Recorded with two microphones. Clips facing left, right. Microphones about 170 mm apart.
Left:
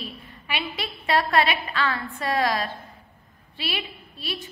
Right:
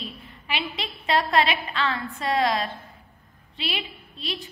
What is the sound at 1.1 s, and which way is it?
A woman's voice, 25° right (ahead or behind).